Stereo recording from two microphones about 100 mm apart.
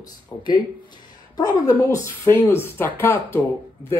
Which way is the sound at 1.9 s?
30° left (ahead or behind).